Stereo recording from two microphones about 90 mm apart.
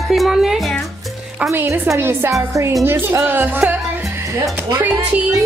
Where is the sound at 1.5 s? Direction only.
30° right (ahead or behind).